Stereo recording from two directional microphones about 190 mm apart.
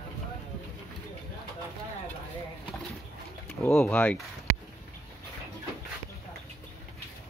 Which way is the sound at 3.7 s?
5° left (ahead or behind).